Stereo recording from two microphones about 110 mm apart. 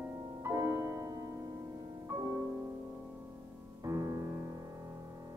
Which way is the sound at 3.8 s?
30° right (ahead or behind).